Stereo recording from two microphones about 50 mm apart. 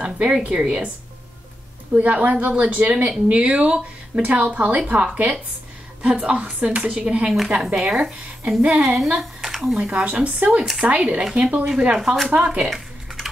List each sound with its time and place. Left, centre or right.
0.0 s a woman's voice: right
2.0 s a woman's voice: right; by 9.8 s centre
10.0 s a woman's voice: right
11.2 s speech: centre
12.6 s a sound: centre